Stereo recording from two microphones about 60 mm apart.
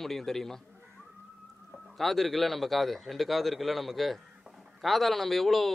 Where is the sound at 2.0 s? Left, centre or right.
Centre.